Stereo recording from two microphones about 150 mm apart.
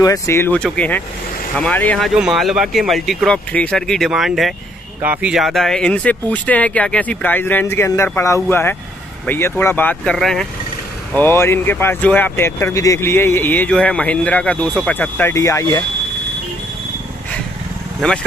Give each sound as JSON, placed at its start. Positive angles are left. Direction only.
{"t": 0.0, "sound": "speech", "side_deg": 20}
{"t": 11.1, "sound": "speech", "side_deg": 15}